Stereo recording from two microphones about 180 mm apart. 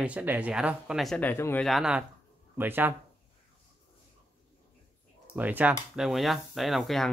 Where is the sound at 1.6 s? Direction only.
Centre (ahead or behind).